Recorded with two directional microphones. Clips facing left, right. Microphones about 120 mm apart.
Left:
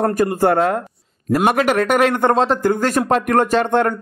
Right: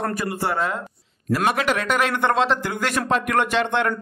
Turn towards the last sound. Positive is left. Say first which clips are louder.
# left 5 dB
turn(degrees=45)  # may be behind; listen again after turning